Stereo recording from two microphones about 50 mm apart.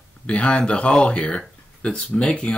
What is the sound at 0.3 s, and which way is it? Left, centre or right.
Speech, left.